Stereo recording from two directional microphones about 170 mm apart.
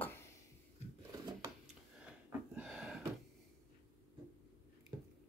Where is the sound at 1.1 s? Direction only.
25° right (ahead or behind).